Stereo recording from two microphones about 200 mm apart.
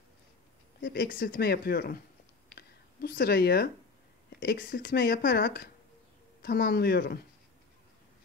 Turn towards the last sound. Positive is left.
turn(degrees=50)  # may be behind; listen again after turning